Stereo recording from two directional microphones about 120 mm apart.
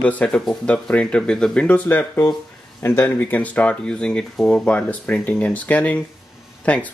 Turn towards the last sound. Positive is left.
turn(degrees=10)  # may be behind; listen again after turning